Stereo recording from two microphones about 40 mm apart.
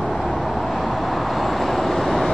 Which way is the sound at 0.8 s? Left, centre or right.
Centre.